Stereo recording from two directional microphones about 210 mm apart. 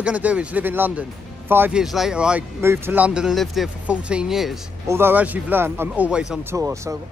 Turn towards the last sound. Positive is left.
turn(degrees=-10)  # may be behind; listen again after turning